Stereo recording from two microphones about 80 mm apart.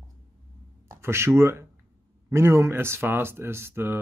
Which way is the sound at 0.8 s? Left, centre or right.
Right.